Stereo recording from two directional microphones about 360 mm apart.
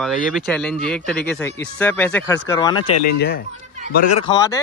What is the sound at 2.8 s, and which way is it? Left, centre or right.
Speech, left.